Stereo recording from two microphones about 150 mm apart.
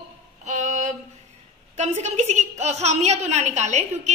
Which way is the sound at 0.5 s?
55° right (ahead or behind).